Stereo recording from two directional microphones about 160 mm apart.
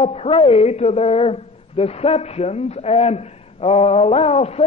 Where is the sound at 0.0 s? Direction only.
40° left (ahead or behind).